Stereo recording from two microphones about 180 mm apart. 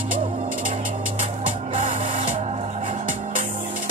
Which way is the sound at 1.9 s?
45° right (ahead or behind).